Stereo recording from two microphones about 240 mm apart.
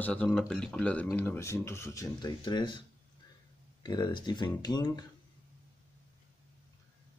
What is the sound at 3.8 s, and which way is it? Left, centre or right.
Speech, centre.